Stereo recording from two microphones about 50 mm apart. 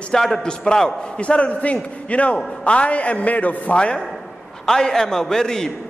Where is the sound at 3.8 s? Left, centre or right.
Left.